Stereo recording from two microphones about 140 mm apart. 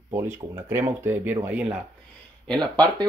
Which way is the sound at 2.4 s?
5° left (ahead or behind).